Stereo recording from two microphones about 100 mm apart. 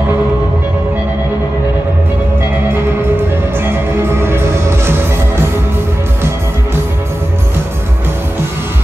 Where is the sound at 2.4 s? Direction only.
25° right (ahead or behind).